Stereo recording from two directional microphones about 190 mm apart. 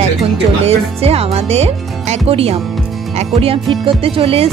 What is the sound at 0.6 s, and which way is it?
Speech, 30° right (ahead or behind).